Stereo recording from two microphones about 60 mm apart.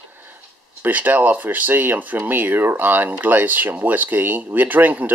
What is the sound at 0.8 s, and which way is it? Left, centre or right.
Speech, right.